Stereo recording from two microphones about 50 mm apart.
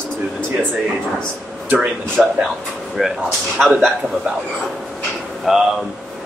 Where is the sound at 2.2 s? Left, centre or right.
Centre.